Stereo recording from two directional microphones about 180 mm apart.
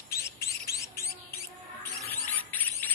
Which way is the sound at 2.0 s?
10° left (ahead or behind).